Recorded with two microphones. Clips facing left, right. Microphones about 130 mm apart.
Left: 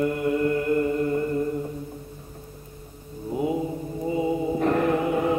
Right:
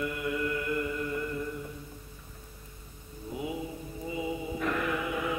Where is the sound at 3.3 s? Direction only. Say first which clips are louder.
Left 10 dB; 40° left (ahead or behind).